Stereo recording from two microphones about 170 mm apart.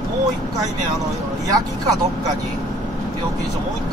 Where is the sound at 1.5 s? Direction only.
20° right (ahead or behind).